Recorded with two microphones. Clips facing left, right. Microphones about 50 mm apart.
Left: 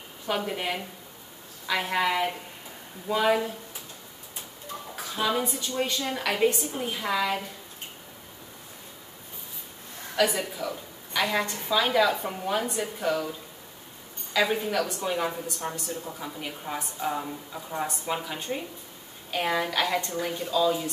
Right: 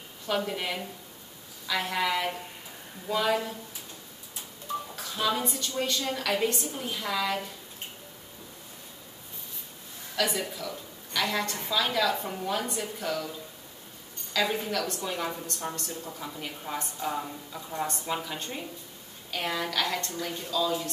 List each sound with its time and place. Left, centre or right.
0.3 s a woman's voice: centre
4.9 s a woman's voice: centre
10.1 s a woman's voice: centre
14.3 s a woman's voice: centre